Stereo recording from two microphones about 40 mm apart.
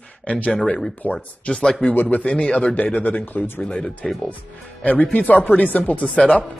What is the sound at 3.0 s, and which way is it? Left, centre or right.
Speech, left.